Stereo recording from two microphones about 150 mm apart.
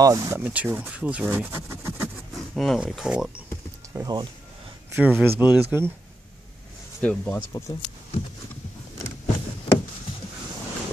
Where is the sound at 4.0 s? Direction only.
25° right (ahead or behind).